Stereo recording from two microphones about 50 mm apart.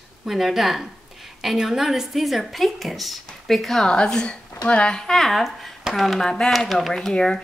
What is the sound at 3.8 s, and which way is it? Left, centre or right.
Speech, centre.